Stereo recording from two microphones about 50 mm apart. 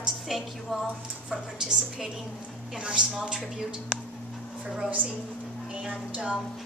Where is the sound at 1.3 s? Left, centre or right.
Centre.